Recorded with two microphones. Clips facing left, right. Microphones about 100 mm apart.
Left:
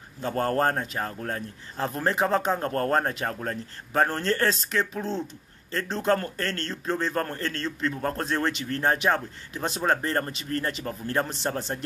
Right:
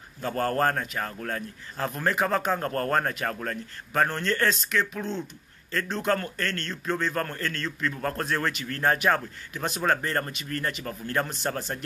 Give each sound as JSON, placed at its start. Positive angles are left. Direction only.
{"t": 0.2, "sound": "a man's voice", "side_deg": 25}